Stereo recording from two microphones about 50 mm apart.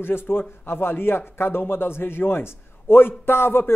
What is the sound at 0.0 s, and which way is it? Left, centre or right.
A man's voice, left.